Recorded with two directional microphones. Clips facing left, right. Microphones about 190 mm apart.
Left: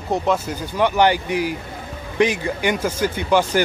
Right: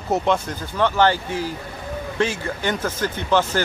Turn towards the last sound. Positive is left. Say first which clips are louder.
# left 2 dB
turn(degrees=10)  # may be behind; listen again after turning